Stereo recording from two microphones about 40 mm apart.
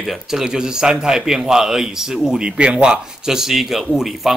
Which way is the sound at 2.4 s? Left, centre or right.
Right.